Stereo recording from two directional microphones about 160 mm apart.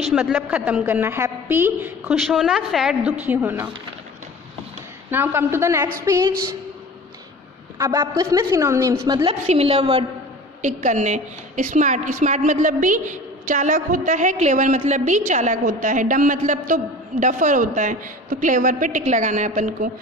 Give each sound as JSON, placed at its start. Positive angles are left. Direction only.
{"t": 0.1, "sound": "a woman's voice", "side_deg": -10}
{"t": 2.1, "sound": "a woman's voice", "side_deg": 0}
{"t": 5.1, "sound": "a woman's voice", "side_deg": -15}
{"t": 7.7, "sound": "a woman's voice", "side_deg": -20}
{"t": 9.3, "sound": "a woman's voice", "side_deg": -40}
{"t": 10.6, "sound": "a woman's voice", "side_deg": -50}